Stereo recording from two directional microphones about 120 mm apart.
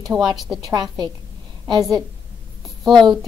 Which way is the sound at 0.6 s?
35° right (ahead or behind).